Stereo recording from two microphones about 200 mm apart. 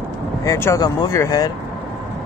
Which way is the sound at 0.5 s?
15° left (ahead or behind).